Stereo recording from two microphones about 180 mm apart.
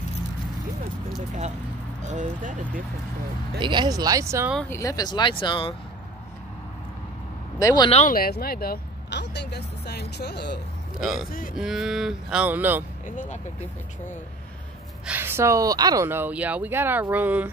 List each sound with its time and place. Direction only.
2.0 s a sound: 40° right (ahead or behind)
3.5 s speech: 25° right (ahead or behind)
4.6 s speech: 15° left (ahead or behind)
7.5 s speech: 20° left (ahead or behind)
7.9 s speech: 45° left (ahead or behind); by 10.6 s 65° left (ahead or behind)
11.0 s speech: centre (ahead or behind)
11.2 s speech: 50° left (ahead or behind)
11.5 s speech: centre (ahead or behind)
13.0 s speech: 45° left (ahead or behind)
15.0 s speech: 10° right (ahead or behind)